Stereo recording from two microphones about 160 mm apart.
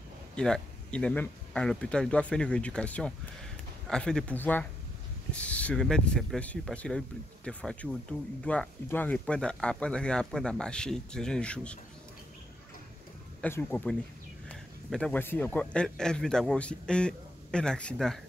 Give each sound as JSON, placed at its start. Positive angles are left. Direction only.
{"t": 0.4, "sound": "speech", "side_deg": 5}
{"t": 13.4, "sound": "speech", "side_deg": 10}